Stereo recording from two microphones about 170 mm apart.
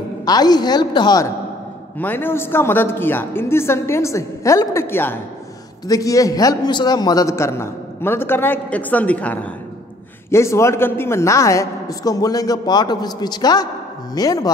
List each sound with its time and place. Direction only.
0.2 s a woman's voice: 25° left (ahead or behind)
2.0 s a man's voice: 10° left (ahead or behind)